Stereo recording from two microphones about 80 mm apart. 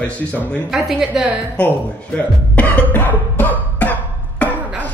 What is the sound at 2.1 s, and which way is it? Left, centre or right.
Speech, centre.